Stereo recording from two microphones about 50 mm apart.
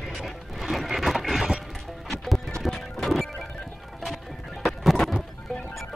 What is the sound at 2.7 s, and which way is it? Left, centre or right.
Music, centre.